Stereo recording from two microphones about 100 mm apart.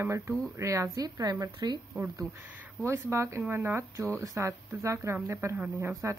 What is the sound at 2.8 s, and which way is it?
Speech, 25° right (ahead or behind).